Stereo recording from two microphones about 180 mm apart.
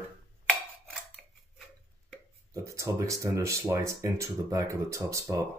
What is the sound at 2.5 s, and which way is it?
Speech, 15° right (ahead or behind).